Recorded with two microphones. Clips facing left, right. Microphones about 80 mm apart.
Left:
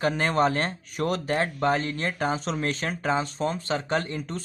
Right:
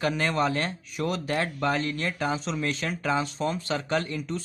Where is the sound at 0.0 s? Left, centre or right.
Left.